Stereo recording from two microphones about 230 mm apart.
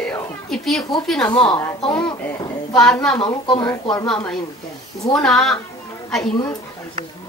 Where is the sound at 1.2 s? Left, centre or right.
Left.